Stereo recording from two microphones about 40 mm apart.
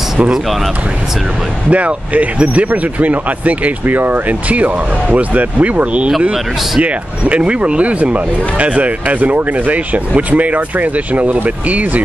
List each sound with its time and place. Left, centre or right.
1.7 s speech: right
3.8 s speech: right